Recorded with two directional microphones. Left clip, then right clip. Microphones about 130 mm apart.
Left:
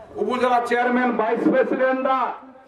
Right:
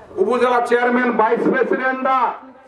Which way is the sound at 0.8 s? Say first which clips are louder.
Right 4 dB; 25° right (ahead or behind).